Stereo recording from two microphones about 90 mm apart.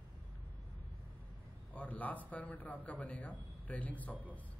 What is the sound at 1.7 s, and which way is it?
A man's voice, 15° left (ahead or behind).